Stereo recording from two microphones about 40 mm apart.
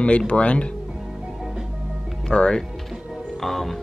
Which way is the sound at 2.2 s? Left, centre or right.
Left.